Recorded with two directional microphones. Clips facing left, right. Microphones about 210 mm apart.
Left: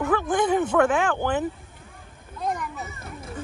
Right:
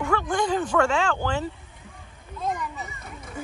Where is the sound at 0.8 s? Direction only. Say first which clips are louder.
Left 2 dB; 15° left (ahead or behind).